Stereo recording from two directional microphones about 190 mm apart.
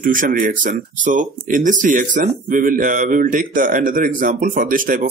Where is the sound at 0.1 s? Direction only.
45° right (ahead or behind).